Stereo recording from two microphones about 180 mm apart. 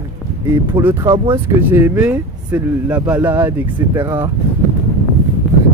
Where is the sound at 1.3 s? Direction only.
15° right (ahead or behind).